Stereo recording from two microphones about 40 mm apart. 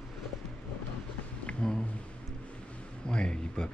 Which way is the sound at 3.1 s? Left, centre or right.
Left.